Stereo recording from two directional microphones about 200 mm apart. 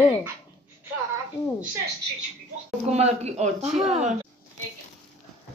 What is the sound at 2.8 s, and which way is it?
Speech, 35° right (ahead or behind).